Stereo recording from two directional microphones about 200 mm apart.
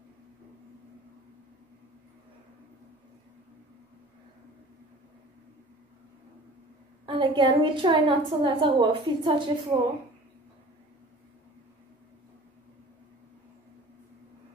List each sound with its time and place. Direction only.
7.1 s a woman's voice: 25° right (ahead or behind)